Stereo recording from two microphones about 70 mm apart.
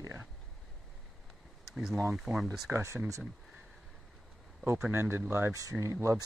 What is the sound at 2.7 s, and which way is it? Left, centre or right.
Speech, right.